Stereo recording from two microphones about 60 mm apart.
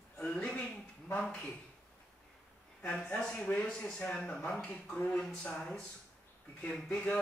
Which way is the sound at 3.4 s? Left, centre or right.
Centre.